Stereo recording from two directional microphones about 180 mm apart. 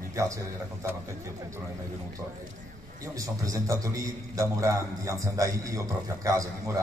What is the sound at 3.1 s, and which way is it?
A man's voice, 20° right (ahead or behind).